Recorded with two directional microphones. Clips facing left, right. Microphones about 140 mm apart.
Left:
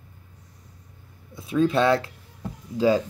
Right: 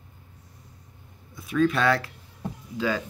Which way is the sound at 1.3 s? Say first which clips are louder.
Left 2 dB; 25° left (ahead or behind).